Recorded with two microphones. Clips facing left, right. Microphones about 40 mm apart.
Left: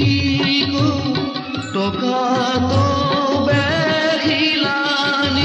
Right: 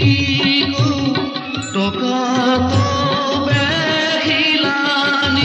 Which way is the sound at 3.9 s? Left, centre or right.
Right.